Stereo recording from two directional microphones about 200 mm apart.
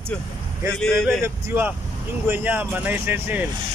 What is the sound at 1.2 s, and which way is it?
Speech, 10° right (ahead or behind).